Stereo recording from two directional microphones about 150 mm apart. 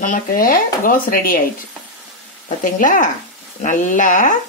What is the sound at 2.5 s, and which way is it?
Speech, 60° left (ahead or behind).